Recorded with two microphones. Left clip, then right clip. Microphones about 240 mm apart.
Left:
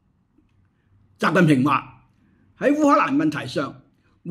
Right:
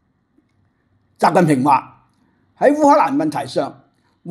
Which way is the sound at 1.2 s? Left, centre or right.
Centre.